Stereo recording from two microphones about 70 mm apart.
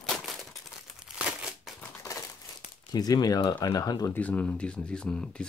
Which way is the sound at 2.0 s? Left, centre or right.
Left.